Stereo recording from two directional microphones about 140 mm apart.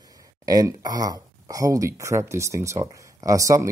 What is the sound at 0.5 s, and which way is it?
Speech, 25° right (ahead or behind).